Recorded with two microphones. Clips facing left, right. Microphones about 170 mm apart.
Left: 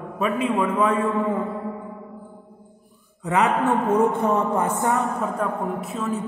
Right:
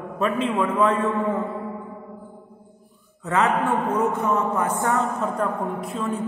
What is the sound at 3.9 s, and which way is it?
Speech, 30° left (ahead or behind).